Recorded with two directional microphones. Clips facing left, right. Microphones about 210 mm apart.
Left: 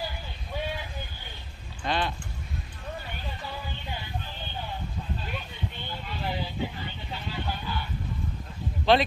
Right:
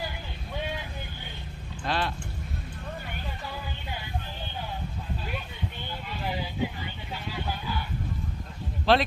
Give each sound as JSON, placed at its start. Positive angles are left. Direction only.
{"t": 1.9, "sound": "speech", "side_deg": 0}
{"t": 6.2, "sound": "a sound", "side_deg": -10}
{"t": 8.9, "sound": "speech", "side_deg": 0}